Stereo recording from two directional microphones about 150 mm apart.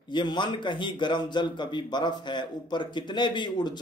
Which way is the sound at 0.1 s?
30° left (ahead or behind).